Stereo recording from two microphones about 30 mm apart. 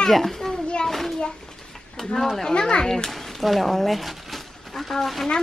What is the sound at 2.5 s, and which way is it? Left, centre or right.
Speech, left.